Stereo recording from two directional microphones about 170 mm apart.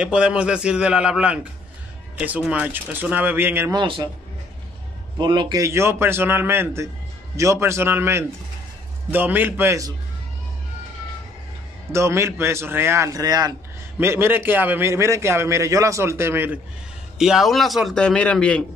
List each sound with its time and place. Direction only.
0.0 s a man's voice: 5° right (ahead or behind)
3.7 s speech: 30° right (ahead or behind)
5.1 s a man's voice: 25° right (ahead or behind)
11.9 s a man's voice: 15° right (ahead or behind)
17.2 s a man's voice: centre (ahead or behind)